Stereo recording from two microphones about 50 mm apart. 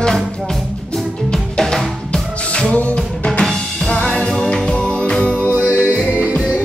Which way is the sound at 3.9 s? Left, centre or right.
Left.